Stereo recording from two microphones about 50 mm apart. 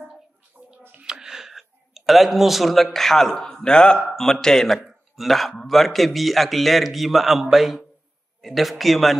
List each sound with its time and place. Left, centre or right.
0.7 s a sound: right
1.0 s speech: centre
4.7 s a man's voice: centre